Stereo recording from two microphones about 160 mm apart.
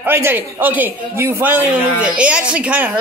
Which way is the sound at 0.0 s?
15° right (ahead or behind).